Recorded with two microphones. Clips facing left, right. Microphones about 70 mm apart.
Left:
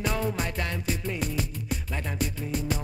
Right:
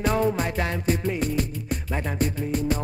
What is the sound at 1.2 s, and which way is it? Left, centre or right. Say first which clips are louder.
Music: right 5 dB; centre.